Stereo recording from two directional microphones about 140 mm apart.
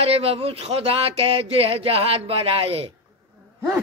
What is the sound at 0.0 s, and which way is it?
Speech, 45° right (ahead or behind).